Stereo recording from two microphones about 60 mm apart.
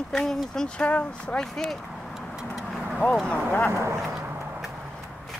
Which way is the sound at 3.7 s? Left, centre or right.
Right.